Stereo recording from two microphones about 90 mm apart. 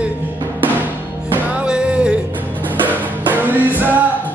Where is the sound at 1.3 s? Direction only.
10° right (ahead or behind).